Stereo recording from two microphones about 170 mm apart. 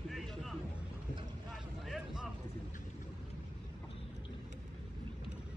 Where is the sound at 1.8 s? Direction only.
Centre (ahead or behind).